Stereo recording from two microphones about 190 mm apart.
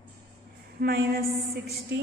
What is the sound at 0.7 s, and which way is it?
Speech, 55° right (ahead or behind).